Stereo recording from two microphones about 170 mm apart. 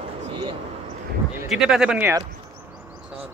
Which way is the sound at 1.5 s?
5° right (ahead or behind).